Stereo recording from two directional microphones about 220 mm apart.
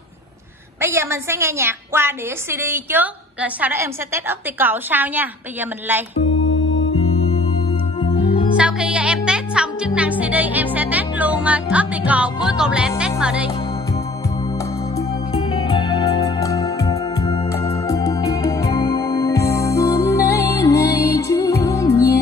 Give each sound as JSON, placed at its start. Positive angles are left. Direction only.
{"t": 0.7, "sound": "a woman's voice", "side_deg": -10}
{"t": 6.4, "sound": "music", "side_deg": 60}
{"t": 8.5, "sound": "music", "side_deg": -5}
{"t": 12.4, "sound": "speech", "side_deg": -5}
{"t": 15.5, "sound": "music", "side_deg": 20}